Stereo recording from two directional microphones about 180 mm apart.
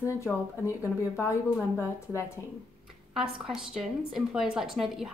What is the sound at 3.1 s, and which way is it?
A woman's voice, 5° right (ahead or behind).